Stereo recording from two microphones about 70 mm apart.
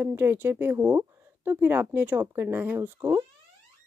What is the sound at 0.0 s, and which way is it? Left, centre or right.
Speech, right.